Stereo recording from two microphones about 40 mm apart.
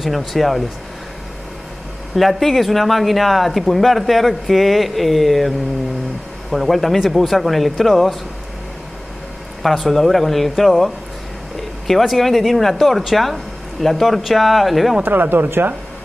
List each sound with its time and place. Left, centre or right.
0.0 s speech: centre
2.1 s speech: centre
6.5 s speech: centre
9.6 s speech: centre
11.9 s speech: centre
15.0 s speech: right